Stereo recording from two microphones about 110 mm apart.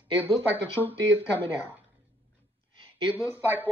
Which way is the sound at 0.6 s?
20° left (ahead or behind).